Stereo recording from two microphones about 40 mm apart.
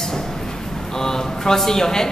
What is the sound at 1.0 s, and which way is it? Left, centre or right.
Speech, centre.